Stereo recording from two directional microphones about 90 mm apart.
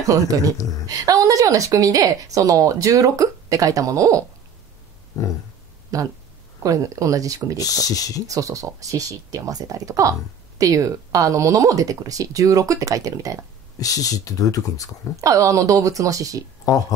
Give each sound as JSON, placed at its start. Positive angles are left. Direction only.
{"t": 0.0, "sound": "a woman's voice", "side_deg": -40}
{"t": 5.1, "sound": "a sound", "side_deg": 45}
{"t": 5.9, "sound": "a woman's voice", "side_deg": -40}
{"t": 7.5, "sound": "speech", "side_deg": 40}
{"t": 8.3, "sound": "a woman's voice", "side_deg": -40}
{"t": 13.7, "sound": "speech", "side_deg": 40}
{"t": 15.1, "sound": "a woman's voice", "side_deg": -40}